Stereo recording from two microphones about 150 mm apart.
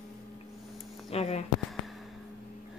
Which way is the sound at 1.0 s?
45° left (ahead or behind).